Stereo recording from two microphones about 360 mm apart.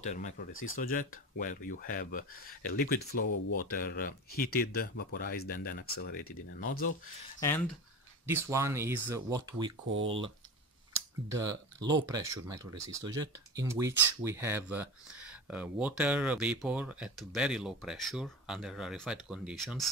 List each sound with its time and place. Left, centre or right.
0.0 s speech: centre
0.5 s speech: left
0.7 s speech: left
7.3 s speech: centre
8.3 s speech: centre